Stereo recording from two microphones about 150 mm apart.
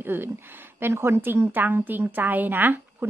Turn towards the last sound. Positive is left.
turn(degrees=-15)  # may be behind; listen again after turning